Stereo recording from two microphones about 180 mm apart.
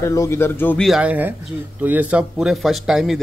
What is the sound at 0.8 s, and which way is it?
A man's voice, 5° right (ahead or behind).